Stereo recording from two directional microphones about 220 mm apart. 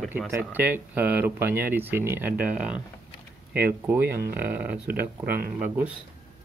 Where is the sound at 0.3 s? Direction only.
10° right (ahead or behind).